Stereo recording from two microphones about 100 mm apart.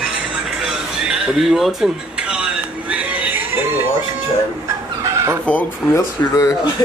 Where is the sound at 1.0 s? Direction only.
5° right (ahead or behind).